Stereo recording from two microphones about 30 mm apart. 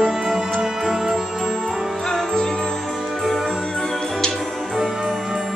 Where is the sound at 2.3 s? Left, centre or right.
Left.